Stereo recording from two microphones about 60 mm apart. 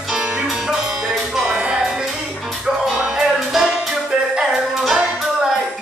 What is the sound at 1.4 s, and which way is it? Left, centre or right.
Music, right.